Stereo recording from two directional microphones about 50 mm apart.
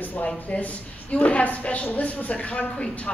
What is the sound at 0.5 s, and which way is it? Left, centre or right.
A woman's voice, left.